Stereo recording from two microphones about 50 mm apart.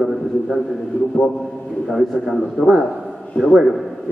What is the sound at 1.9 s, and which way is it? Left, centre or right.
Speech, centre.